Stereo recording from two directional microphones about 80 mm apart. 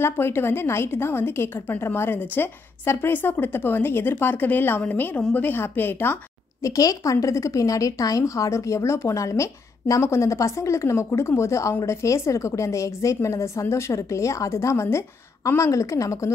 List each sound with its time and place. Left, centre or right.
0.0 s a woman's voice: left
6.6 s speech: left